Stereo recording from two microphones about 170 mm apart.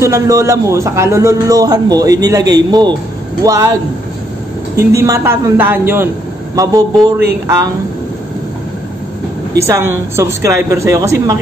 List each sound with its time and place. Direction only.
0.0 s speech: 15° right (ahead or behind)
4.7 s speech: 20° right (ahead or behind)
9.7 s speech: 15° right (ahead or behind)